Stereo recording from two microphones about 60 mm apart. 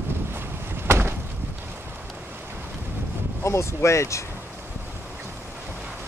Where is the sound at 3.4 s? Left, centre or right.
Left.